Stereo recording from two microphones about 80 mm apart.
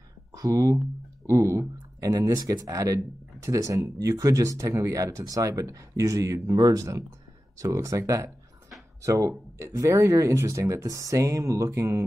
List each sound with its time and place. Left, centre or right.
0.3 s speech: right